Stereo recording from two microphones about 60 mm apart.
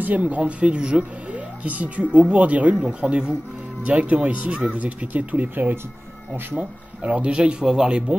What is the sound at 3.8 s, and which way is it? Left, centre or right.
Speech, right.